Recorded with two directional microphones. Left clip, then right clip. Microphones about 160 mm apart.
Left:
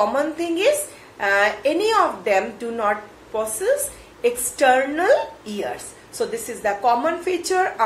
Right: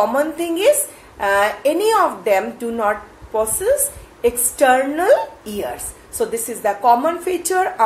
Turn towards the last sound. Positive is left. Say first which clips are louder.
# right 2 dB
turn(degrees=-25)  # may be behind; listen again after turning